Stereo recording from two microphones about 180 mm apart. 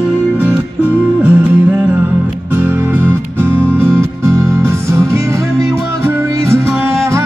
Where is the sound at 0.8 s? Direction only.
10° right (ahead or behind).